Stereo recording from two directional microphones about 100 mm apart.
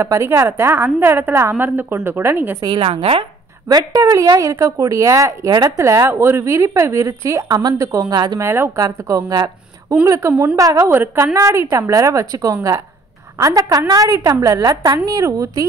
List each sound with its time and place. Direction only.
0.0 s a woman's voice: 30° right (ahead or behind)
2.7 s a woman's voice: 75° right (ahead or behind)
3.6 s speech: 35° right (ahead or behind)
10.8 s a woman's voice: 20° right (ahead or behind)